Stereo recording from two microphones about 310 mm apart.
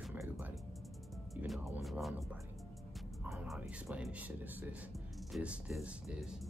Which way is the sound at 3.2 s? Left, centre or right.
Centre.